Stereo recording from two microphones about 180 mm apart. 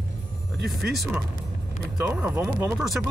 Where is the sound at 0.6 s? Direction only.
Centre (ahead or behind); by 2.8 s 15° right (ahead or behind).